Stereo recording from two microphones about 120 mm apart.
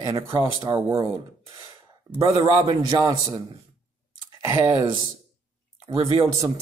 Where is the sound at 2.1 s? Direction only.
30° right (ahead or behind).